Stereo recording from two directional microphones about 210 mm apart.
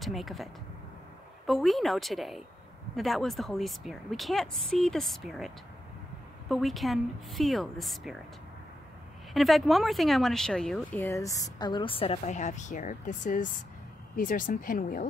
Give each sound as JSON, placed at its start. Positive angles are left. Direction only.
{"t": 0.0, "sound": "speech", "side_deg": 0}
{"t": 6.5, "sound": "speech", "side_deg": 0}
{"t": 9.3, "sound": "speech", "side_deg": 0}